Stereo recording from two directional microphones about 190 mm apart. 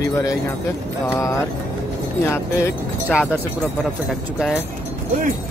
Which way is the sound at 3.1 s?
5° right (ahead or behind).